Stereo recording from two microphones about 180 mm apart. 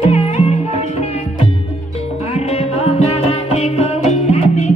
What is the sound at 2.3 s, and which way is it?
Music, 35° left (ahead or behind).